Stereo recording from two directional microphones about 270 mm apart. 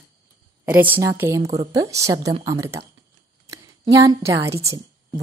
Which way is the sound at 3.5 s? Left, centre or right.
Centre.